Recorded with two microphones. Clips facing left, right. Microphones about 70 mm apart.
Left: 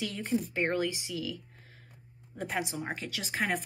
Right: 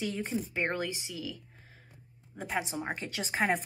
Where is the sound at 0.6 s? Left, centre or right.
Centre.